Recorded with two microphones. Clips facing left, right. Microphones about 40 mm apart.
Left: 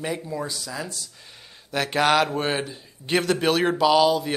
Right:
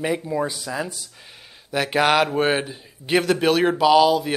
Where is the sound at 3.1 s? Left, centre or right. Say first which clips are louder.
Right 3 dB; centre.